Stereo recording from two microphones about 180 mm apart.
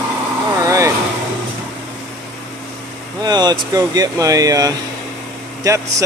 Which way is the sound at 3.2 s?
20° right (ahead or behind).